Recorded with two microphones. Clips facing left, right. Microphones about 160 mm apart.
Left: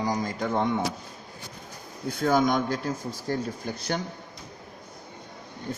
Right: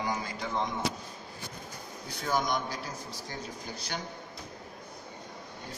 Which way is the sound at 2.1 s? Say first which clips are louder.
Left 8 dB; 55° left (ahead or behind).